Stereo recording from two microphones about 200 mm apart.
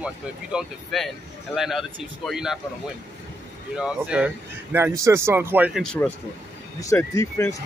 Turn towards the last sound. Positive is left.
turn(degrees=15)  # may be behind; listen again after turning